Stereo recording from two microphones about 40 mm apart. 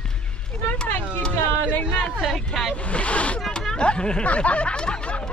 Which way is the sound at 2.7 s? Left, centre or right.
Left.